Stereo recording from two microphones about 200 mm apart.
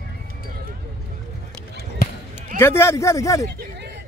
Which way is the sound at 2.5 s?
10° left (ahead or behind).